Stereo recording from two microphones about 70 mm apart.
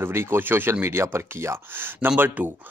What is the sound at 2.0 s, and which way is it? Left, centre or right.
Speech, right.